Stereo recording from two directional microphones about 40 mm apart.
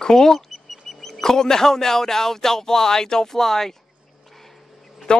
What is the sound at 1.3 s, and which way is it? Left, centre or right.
Speech, centre.